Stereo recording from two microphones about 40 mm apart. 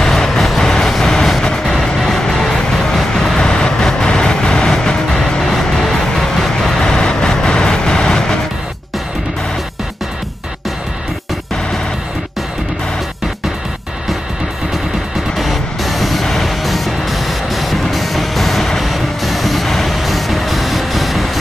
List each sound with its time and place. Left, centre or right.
0.0 s vehicle: centre
15.3 s vehicle: centre